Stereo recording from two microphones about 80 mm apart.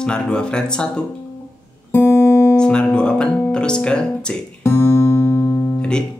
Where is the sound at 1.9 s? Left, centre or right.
Left.